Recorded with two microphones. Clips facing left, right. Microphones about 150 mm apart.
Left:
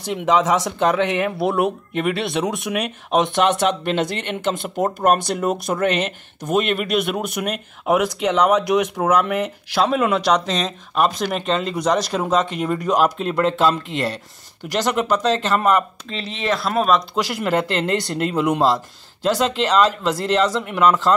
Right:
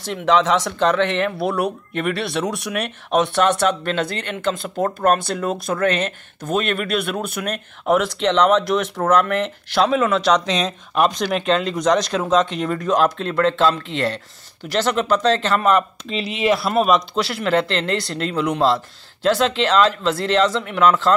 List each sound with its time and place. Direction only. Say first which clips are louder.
0.1 s speech: even; 15° left (ahead or behind)
16.1 s speech: right 7 dB; 10° right (ahead or behind)
17.1 s speech: right 1 dB; 10° left (ahead or behind)